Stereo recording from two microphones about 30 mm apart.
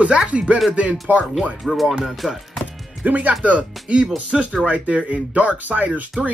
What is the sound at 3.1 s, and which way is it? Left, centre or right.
Speech, right.